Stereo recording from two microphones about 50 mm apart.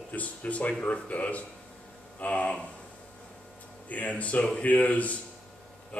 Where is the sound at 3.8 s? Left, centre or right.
Left.